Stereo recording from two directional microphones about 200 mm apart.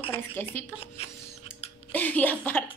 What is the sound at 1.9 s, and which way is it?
Speech, 10° left (ahead or behind).